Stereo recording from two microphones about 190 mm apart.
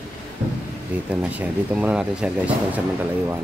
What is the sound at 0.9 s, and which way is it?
Speech, 5° right (ahead or behind).